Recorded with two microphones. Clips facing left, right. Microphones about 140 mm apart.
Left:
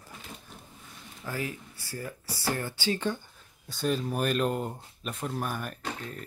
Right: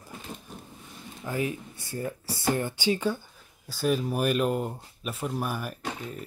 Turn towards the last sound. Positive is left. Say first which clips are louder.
# right 2 dB
turn(degrees=-10)  # may be behind; listen again after turning